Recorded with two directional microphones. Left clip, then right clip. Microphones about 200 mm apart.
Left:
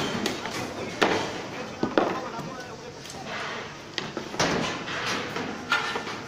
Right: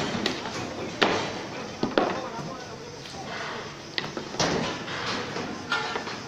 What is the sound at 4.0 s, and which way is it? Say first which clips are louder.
Drawer open or close: right 2 dB; 45° left (ahead or behind).